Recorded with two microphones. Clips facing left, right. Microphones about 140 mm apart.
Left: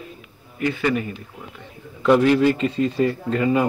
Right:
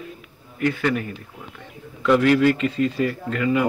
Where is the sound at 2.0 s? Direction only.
20° left (ahead or behind).